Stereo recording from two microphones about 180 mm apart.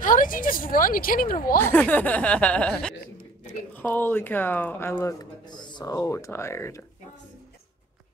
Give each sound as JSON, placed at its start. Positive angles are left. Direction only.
{"t": 0.0, "sound": "speech", "side_deg": 50}
{"t": 1.6, "sound": "speech", "side_deg": 10}